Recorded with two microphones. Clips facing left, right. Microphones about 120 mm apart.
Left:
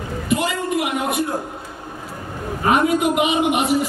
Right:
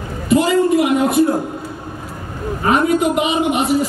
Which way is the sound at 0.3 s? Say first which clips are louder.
Right 8 dB; 30° right (ahead or behind).